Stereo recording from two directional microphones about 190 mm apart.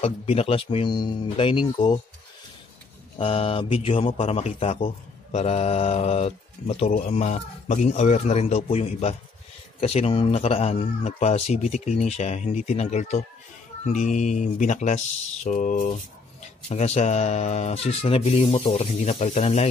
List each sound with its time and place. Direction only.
0.0 s speech: 30° left (ahead or behind)
3.2 s speech: 30° left (ahead or behind)